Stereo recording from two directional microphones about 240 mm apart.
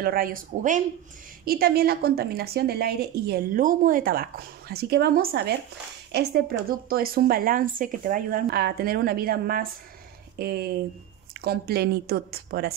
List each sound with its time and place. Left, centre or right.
0.0 s a woman's voice: right